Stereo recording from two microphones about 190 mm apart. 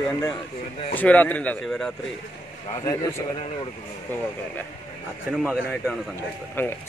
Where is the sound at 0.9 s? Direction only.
10° left (ahead or behind).